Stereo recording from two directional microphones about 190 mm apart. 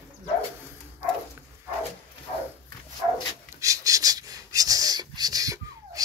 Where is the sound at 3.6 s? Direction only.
15° right (ahead or behind).